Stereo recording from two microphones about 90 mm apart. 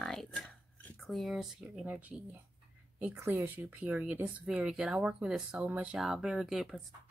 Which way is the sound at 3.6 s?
20° right (ahead or behind).